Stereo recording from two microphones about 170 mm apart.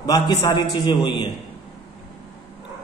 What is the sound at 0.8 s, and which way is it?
Speech, 25° left (ahead or behind).